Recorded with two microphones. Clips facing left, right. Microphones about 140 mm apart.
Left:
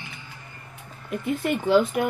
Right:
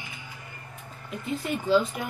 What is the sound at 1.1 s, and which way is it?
Speech, 60° left (ahead or behind).